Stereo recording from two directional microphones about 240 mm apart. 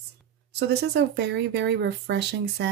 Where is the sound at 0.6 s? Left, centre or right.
Right.